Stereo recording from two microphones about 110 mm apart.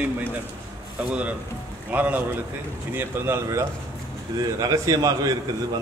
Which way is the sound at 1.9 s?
15° right (ahead or behind).